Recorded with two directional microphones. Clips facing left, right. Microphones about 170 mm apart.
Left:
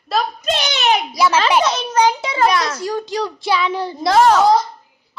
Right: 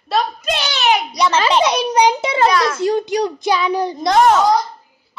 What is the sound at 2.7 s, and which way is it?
A child's voice, 20° right (ahead or behind).